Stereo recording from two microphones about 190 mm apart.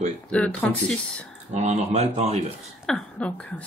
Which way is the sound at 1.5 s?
35° right (ahead or behind).